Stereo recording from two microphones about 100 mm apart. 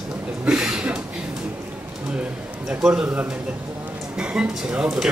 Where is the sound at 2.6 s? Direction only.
10° right (ahead or behind).